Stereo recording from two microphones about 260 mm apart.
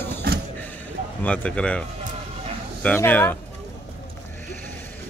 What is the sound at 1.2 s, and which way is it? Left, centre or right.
Speech, centre.